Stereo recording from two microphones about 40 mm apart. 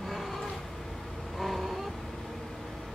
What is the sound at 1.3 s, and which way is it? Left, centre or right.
Vehicle, centre.